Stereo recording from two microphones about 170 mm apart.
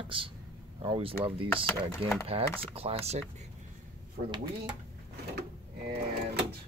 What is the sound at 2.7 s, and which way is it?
Speech, 35° right (ahead or behind).